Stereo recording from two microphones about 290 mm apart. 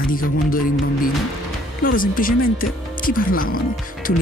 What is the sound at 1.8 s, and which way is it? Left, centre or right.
Speech, left.